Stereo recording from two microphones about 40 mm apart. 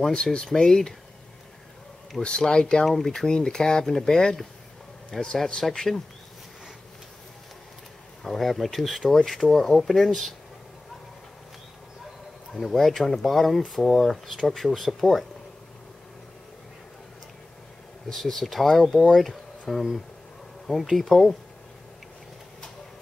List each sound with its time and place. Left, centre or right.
0.1 s speech: left
2.2 s speech: centre
2.8 s speech: centre
3.3 s speech: centre
8.2 s speech: centre
12.5 s speech: centre
18.1 s speech: centre